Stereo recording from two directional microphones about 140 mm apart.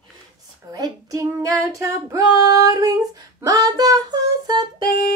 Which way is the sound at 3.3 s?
25° right (ahead or behind).